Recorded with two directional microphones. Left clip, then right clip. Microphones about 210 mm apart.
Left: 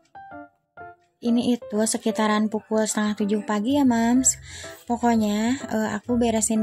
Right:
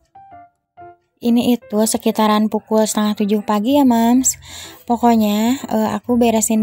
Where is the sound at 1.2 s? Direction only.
30° right (ahead or behind).